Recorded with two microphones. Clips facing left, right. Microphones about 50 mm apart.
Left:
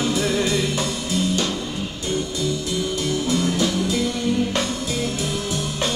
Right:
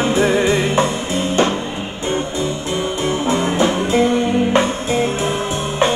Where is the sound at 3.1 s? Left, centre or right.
Right.